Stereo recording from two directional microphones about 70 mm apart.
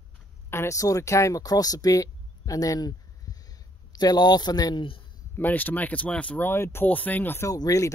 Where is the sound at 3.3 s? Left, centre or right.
Left.